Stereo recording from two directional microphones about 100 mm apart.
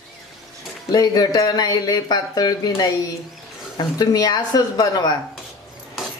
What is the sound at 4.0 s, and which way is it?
Speech, 40° left (ahead or behind).